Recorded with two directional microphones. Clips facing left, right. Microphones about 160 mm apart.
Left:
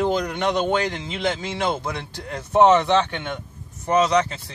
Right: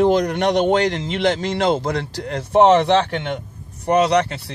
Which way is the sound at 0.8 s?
80° right.